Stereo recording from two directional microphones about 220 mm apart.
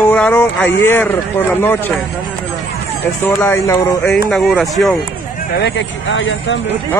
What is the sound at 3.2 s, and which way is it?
Speech, 10° left (ahead or behind).